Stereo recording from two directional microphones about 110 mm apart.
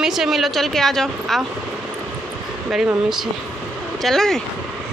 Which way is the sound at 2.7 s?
5° right (ahead or behind).